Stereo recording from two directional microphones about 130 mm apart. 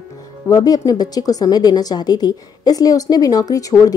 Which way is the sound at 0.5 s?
25° left (ahead or behind).